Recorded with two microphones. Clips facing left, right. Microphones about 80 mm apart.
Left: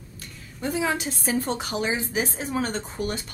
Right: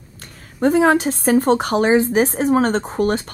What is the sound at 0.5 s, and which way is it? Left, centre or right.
Speech, right.